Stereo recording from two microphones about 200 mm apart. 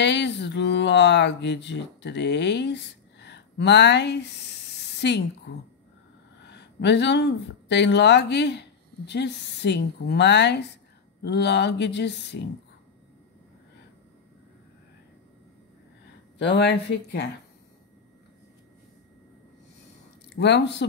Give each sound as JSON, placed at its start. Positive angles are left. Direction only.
{"t": 0.0, "sound": "speech", "side_deg": 60}
{"t": 4.9, "sound": "a sound", "side_deg": 60}
{"t": 6.4, "sound": "speech", "side_deg": 60}
{"t": 16.3, "sound": "speech", "side_deg": 60}
{"t": 20.3, "sound": "speech", "side_deg": 60}